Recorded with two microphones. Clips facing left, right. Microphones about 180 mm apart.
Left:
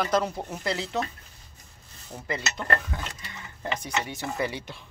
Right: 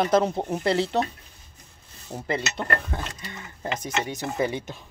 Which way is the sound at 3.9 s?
20° right (ahead or behind).